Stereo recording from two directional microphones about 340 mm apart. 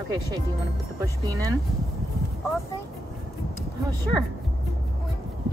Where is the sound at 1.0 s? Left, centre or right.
Centre.